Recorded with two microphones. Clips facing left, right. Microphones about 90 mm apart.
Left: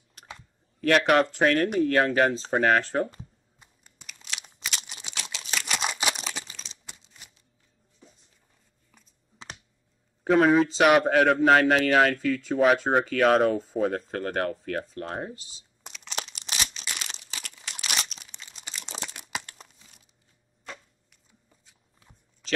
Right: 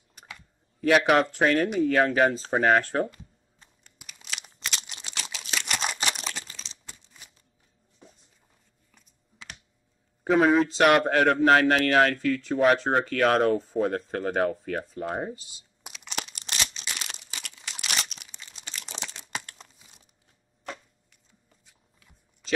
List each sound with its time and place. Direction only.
0.7 s speech: 5° right (ahead or behind)
3.5 s computer keyboard: 10° left (ahead or behind)
4.0 s crumpling: centre (ahead or behind)
10.2 s a man's voice: centre (ahead or behind)
18.4 s crumpling: 5° left (ahead or behind)